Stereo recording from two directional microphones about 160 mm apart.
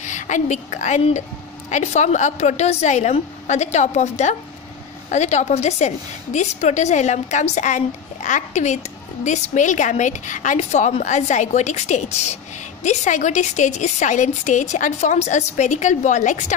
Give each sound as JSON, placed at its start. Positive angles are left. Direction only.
{"t": 0.0, "sound": "a woman's voice", "side_deg": 50}